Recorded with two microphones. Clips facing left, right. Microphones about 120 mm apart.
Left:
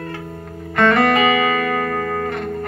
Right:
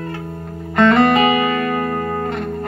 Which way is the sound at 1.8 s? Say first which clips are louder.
Right 1 dB; 90° left.